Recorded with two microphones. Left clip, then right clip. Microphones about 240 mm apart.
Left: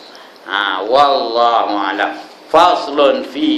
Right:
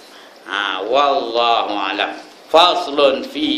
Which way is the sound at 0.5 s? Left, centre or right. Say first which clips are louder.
Left 4 dB; centre.